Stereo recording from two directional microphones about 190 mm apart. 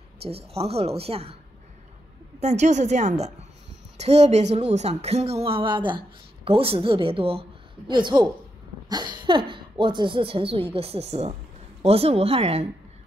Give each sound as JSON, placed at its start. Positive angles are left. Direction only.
{"t": 0.2, "sound": "a woman's voice", "side_deg": -30}
{"t": 2.4, "sound": "a woman's voice", "side_deg": -35}